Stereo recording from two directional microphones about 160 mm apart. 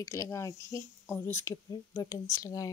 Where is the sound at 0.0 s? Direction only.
20° left (ahead or behind).